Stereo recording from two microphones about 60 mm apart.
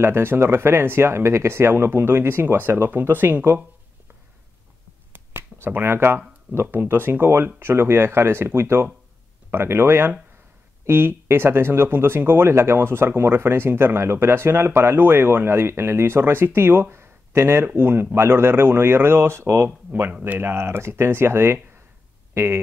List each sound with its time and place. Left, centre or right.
0.0 s speech: right
5.1 s speech: right
19.9 s speech: right
20.2 s speech: right